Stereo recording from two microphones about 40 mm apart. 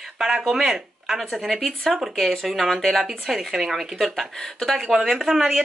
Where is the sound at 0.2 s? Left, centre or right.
Centre.